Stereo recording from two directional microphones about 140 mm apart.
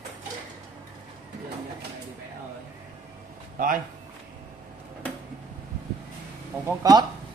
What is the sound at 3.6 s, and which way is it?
Speech, 90° right.